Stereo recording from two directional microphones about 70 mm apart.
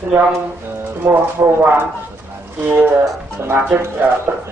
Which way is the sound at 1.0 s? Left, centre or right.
Right.